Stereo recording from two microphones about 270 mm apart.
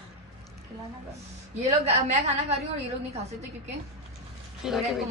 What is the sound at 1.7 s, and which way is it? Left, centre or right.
A woman's voice, right.